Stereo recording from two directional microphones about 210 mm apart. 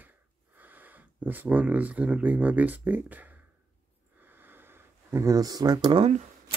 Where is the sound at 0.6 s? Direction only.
10° right (ahead or behind).